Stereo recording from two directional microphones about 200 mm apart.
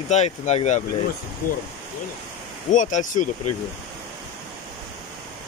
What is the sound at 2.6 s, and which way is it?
Speech, 40° left (ahead or behind).